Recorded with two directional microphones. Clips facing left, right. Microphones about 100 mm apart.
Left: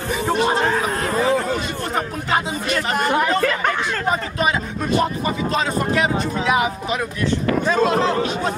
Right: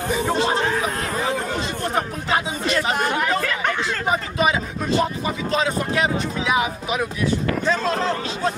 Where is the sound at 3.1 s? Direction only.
45° left (ahead or behind).